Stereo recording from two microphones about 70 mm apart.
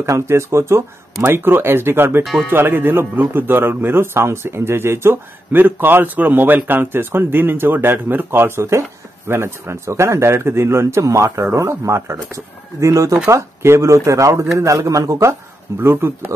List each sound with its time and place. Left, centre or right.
0.0 s speech: right
15.8 s speech: right